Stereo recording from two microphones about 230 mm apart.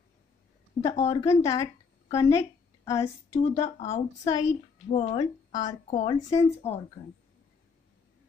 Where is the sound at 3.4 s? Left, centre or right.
Left.